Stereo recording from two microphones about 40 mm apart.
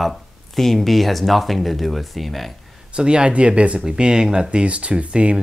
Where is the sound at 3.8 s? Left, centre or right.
Centre.